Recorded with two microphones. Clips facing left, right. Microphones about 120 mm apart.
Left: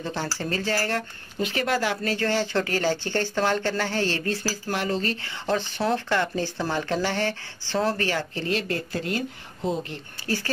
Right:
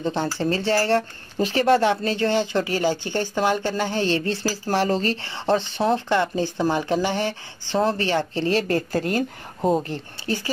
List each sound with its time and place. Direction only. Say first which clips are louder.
0.0 s speech: right 6 dB; 20° right (ahead or behind)
4.2 s speech: right 3 dB; 30° right (ahead or behind)
8.5 s a woman's voice: right 5 dB; 40° right (ahead or behind)
10.2 s speech: right 1 dB; 20° right (ahead or behind)